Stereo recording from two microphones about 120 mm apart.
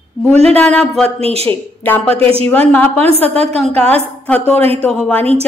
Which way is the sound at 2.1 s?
55° right (ahead or behind).